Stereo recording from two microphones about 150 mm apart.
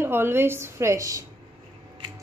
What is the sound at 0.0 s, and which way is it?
A woman's voice, 15° right (ahead or behind).